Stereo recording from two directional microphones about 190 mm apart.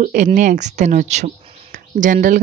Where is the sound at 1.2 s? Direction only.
45° right (ahead or behind).